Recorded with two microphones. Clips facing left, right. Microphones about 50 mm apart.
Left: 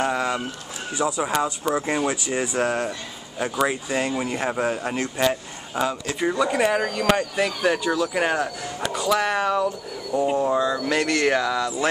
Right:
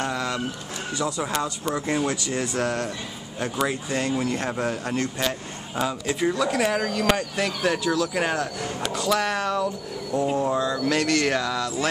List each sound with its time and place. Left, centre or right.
0.0 s pigeon: centre
0.9 s speech: centre
5.8 s speech: centre